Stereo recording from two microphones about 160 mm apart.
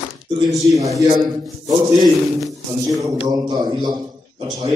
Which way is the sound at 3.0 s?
25° right (ahead or behind).